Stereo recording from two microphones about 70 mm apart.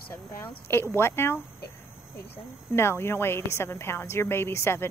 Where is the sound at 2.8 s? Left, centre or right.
Left.